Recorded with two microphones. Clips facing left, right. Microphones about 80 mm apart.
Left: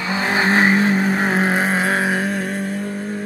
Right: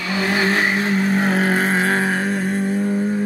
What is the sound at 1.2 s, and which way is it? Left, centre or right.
Vehicle, centre.